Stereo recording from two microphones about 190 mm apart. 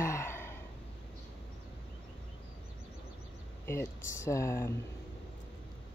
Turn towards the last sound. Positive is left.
turn(degrees=15)  # may be behind; listen again after turning